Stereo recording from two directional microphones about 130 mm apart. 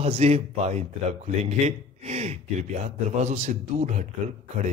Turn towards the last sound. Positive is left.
turn(degrees=-65)  # may be behind; listen again after turning